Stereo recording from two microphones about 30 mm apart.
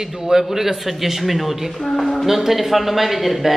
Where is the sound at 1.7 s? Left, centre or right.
Centre.